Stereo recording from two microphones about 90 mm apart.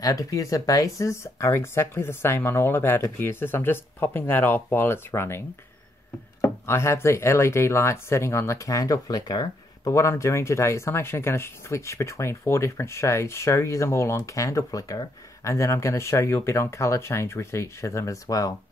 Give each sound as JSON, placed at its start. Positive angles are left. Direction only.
{"t": 0.0, "sound": "speech", "side_deg": 40}
{"t": 6.4, "sound": "speech", "side_deg": 30}